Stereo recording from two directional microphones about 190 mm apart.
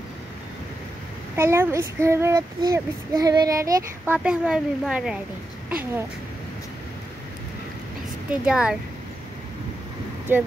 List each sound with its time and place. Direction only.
1.3 s speech: 15° right (ahead or behind)
8.3 s speech: 5° right (ahead or behind)
10.3 s speech: 10° right (ahead or behind)